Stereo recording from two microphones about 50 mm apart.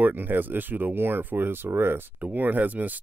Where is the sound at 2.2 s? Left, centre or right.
Right.